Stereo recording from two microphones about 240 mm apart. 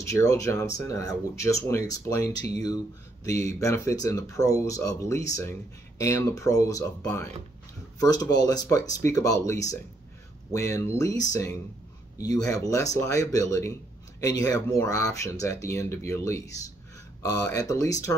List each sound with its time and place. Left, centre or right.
0.1 s speech: centre
3.3 s speech: centre
12.2 s speech: centre